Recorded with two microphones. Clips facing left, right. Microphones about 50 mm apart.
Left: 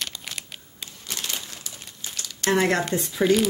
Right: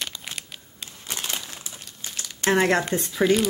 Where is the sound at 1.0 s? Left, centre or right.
Right.